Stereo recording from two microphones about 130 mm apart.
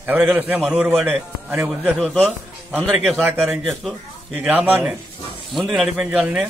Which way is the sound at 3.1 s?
10° right (ahead or behind).